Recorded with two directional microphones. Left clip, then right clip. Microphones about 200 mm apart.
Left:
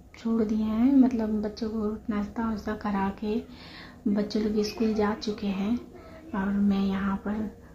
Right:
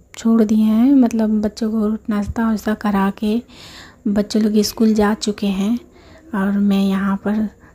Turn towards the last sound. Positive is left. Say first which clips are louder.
# right 10 dB
turn(degrees=-45)  # may be behind; listen again after turning